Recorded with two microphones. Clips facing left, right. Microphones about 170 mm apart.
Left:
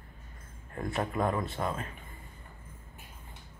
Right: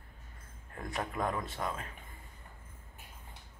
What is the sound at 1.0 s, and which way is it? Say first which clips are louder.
Speech: left 4 dB; 10° left (ahead or behind).